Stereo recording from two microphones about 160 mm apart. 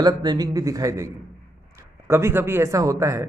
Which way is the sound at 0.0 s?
25° right (ahead or behind).